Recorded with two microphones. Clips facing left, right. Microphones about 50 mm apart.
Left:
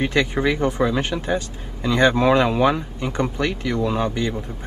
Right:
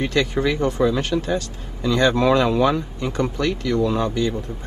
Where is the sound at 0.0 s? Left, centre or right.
Left.